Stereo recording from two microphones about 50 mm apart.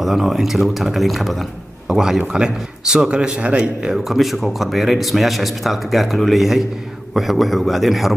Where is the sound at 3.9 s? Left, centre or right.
Centre.